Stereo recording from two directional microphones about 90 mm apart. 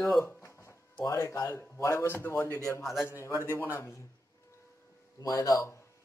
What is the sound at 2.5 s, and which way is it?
A man's voice, 35° left (ahead or behind).